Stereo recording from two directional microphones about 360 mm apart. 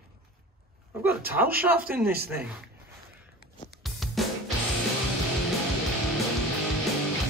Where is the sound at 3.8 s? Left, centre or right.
Centre.